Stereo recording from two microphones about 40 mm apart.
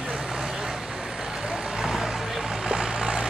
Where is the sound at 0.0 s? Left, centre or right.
Centre.